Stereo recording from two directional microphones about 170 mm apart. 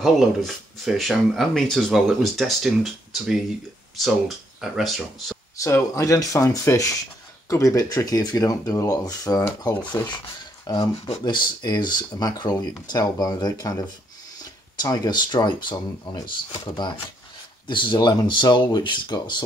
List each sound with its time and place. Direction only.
0.0 s speech: centre (ahead or behind)
5.6 s speech: 15° left (ahead or behind)